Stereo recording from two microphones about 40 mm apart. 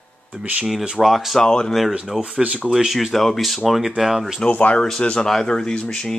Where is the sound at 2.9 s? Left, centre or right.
Centre.